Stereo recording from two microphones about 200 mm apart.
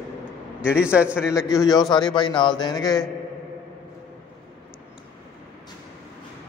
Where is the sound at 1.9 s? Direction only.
20° left (ahead or behind).